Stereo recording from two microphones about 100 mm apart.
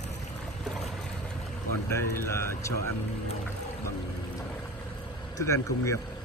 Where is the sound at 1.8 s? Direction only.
30° left (ahead or behind).